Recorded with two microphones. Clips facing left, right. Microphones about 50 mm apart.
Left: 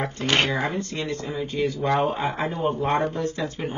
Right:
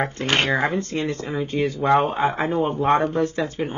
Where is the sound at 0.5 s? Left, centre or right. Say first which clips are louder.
Right 4 dB; right.